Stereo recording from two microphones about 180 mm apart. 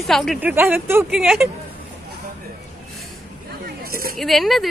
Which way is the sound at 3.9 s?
55° right (ahead or behind).